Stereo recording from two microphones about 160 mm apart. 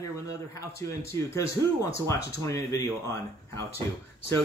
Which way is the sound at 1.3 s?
20° left (ahead or behind).